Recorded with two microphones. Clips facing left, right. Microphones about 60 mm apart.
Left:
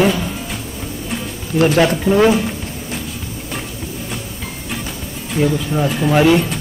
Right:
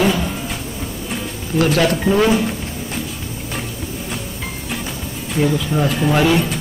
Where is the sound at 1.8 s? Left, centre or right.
Left.